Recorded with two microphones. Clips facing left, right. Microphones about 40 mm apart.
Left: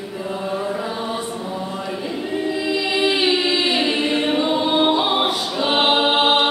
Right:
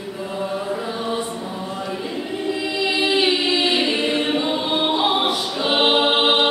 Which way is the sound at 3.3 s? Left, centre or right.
Left.